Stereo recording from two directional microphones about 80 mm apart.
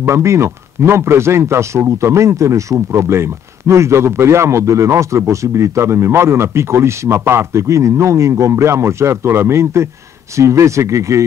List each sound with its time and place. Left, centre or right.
0.0 s speech: right